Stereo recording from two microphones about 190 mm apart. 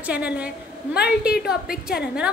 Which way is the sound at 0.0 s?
5° right (ahead or behind).